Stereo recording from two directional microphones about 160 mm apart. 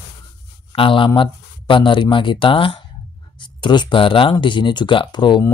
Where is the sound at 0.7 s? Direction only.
30° left (ahead or behind).